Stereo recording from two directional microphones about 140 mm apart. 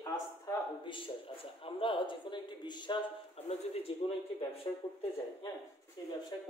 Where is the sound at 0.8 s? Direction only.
40° left (ahead or behind).